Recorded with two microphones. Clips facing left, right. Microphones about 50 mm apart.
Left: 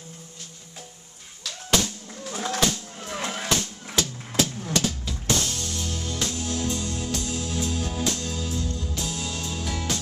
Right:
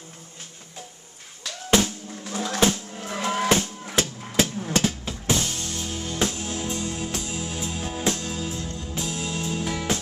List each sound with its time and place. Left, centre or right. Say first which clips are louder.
1.4 s music: right 3 dB; right
5.2 s music: right 1 dB; right